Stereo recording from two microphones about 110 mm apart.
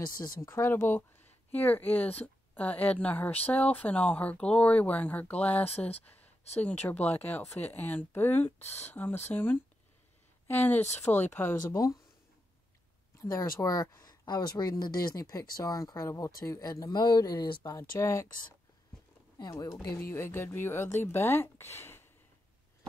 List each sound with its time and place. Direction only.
0.4 s speech: 25° left (ahead or behind)
10.8 s speech: 90° left
11.3 s speech: 20° left (ahead or behind)
13.2 s speech: 30° left (ahead or behind)
19.3 s speech: 35° left (ahead or behind)
19.9 s speech: 25° left (ahead or behind)